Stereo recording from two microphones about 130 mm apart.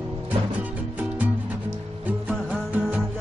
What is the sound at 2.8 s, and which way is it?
Music, 10° right (ahead or behind).